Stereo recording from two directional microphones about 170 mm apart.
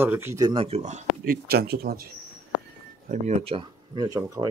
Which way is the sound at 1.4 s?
65° right (ahead or behind).